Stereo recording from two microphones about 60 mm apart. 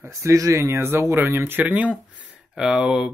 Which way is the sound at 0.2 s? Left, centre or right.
Right.